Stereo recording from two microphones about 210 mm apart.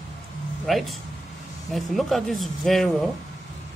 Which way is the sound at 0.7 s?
Centre (ahead or behind).